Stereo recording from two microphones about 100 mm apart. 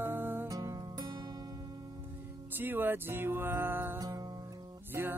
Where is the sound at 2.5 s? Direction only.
20° right (ahead or behind).